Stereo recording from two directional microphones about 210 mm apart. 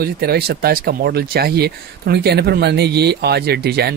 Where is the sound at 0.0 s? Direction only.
50° right (ahead or behind).